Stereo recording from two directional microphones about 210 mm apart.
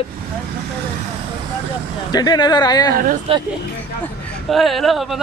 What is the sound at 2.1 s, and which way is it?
Speech, 20° left (ahead or behind).